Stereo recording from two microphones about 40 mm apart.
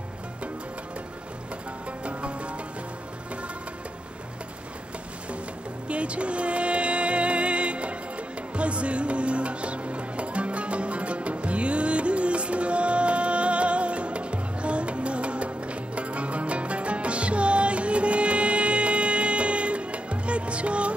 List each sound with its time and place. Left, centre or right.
2.0 s music: right
5.9 s music: right